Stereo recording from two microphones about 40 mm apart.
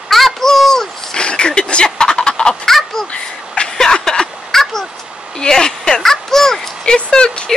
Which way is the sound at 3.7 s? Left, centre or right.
Centre.